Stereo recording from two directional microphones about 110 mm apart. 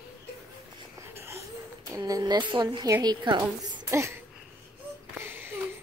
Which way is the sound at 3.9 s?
25° right (ahead or behind).